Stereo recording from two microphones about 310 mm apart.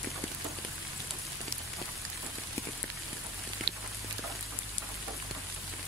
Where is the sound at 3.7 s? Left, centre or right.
Right.